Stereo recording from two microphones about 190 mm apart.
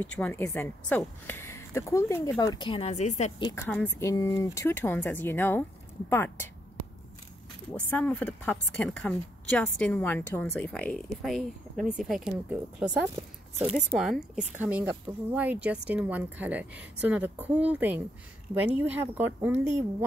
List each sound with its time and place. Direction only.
0.0 s a woman's voice: 10° left (ahead or behind); by 3.3 s 35° left (ahead or behind)
3.3 s speech: 25° left (ahead or behind)
3.6 s a woman's voice: 10° left (ahead or behind)
7.9 s a woman's voice: 10° left (ahead or behind); by 19.7 s 10° right (ahead or behind)